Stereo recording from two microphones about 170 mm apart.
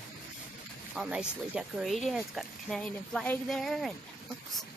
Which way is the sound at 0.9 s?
5° right (ahead or behind).